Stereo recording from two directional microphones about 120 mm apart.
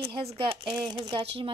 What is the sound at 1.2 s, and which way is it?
Speech, 55° right (ahead or behind).